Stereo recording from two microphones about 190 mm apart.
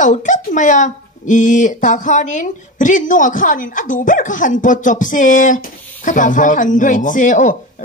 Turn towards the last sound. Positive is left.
turn(degrees=45)  # may be behind; listen again after turning